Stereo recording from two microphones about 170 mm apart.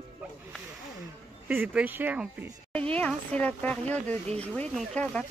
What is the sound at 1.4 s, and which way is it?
Speech, 10° right (ahead or behind).